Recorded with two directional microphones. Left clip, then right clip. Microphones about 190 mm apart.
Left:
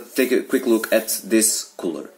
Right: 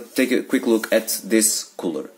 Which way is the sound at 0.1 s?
25° right (ahead or behind).